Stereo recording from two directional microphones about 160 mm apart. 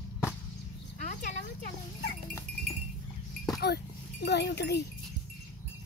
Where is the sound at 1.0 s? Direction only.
55° left (ahead or behind).